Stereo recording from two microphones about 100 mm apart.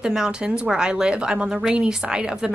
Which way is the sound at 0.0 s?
5° right (ahead or behind).